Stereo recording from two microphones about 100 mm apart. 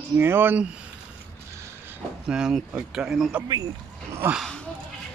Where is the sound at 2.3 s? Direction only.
5° right (ahead or behind).